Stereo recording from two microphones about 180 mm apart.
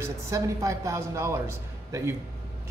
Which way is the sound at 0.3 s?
15° right (ahead or behind).